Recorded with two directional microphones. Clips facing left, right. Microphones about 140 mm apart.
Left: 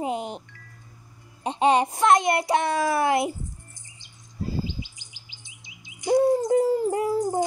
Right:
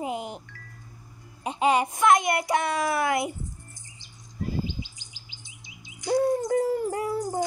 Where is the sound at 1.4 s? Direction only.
30° left (ahead or behind).